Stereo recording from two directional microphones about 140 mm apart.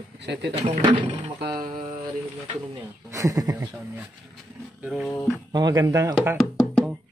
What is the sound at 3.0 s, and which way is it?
Speech, 20° right (ahead or behind).